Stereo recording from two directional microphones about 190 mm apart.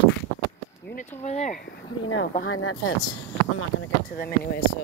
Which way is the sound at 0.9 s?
40° left (ahead or behind).